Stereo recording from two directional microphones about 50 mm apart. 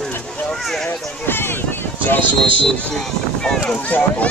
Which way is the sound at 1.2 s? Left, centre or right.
Left.